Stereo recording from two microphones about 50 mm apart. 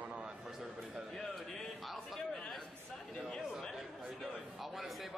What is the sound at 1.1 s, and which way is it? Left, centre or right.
Speech, centre.